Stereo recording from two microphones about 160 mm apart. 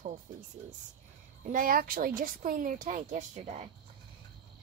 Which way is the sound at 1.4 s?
60° right (ahead or behind).